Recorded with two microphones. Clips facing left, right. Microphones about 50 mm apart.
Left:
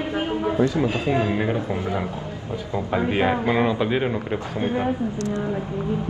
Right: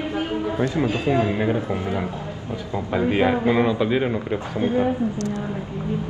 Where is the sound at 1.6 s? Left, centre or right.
Right.